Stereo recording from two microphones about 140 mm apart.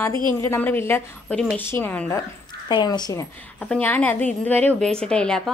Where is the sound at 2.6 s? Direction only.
30° left (ahead or behind).